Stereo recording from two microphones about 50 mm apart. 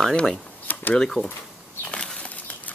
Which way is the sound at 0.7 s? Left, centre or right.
Left.